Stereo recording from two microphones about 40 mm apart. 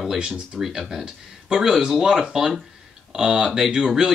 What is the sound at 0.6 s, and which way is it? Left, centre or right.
Speech, centre.